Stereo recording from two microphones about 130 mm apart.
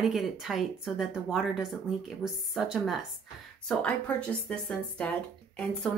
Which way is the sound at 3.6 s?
10° left (ahead or behind).